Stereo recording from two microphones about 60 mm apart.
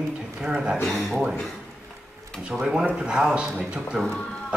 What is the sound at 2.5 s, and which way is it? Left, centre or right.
A man's voice, centre.